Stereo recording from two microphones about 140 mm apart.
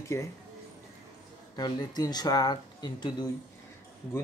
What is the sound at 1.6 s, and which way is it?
Speech, 30° left (ahead or behind).